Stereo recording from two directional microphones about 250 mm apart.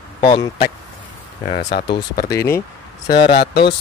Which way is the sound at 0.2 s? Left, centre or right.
Centre.